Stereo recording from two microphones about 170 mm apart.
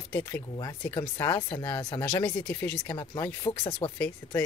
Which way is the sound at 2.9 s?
25° left (ahead or behind).